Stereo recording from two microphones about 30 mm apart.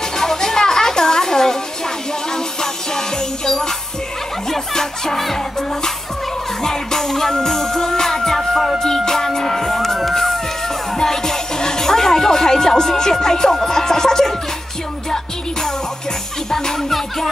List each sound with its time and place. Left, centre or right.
0.2 s music: centre
4.5 s speech: centre
6.6 s music: centre
8.4 s music: centre
8.7 s music: centre
16.4 s jingle bell: centre